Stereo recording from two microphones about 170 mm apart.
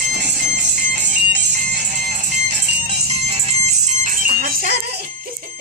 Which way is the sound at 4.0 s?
55° right (ahead or behind).